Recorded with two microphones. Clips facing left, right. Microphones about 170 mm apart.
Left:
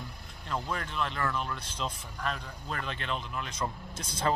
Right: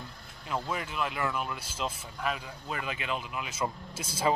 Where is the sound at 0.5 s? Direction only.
5° right (ahead or behind).